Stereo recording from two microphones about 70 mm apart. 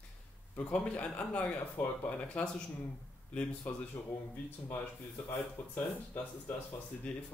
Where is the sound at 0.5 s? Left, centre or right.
Centre.